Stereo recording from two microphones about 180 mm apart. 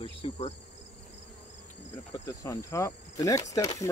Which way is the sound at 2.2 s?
15° left (ahead or behind).